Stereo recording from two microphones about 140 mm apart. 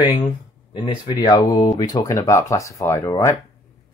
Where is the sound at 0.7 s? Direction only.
30° left (ahead or behind).